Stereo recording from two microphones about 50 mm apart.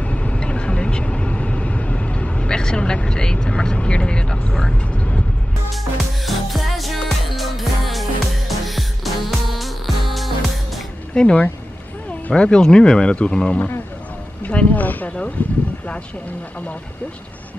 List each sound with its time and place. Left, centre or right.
0.0 s vehicle: left
6.2 s music: centre
11.1 s speech: centre
14.4 s a sound: left
15.4 s speech: left